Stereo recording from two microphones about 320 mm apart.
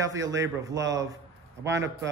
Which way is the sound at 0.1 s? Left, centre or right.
Right.